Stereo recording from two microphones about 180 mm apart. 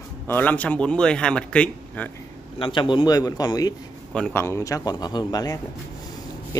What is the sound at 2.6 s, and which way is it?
A man's voice, 25° left (ahead or behind).